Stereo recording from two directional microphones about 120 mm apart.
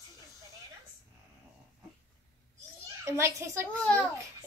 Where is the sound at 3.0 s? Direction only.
25° right (ahead or behind).